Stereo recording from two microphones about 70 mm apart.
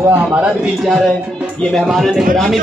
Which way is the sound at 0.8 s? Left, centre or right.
Centre.